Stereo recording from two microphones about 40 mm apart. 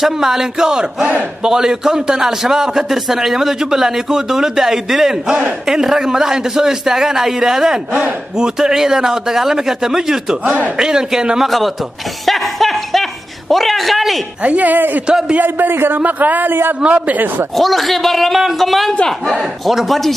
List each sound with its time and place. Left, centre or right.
0.0 s a man's voice: centre
10.4 s speech: right
10.8 s a man's voice: centre
11.4 s a man's voice: centre
12.3 s chuckle: centre
14.4 s speech: right
15.0 s a man's voice: centre
15.4 s a man's voice: right
16.0 s speech: right
16.8 s speech: right
17.6 s a man's voice: centre